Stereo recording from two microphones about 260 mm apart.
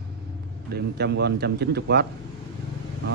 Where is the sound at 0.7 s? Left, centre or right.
Right.